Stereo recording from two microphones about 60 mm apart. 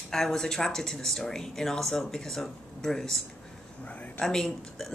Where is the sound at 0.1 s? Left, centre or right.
Centre.